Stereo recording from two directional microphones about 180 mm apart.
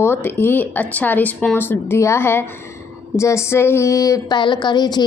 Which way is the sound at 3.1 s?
15° left (ahead or behind).